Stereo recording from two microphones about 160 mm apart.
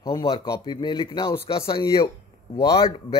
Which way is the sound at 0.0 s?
25° left (ahead or behind).